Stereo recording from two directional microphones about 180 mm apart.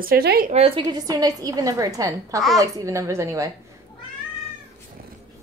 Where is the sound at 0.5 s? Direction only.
35° right (ahead or behind); by 3.5 s 15° right (ahead or behind).